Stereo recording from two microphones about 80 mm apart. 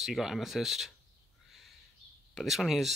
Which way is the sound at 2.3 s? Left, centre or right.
Centre.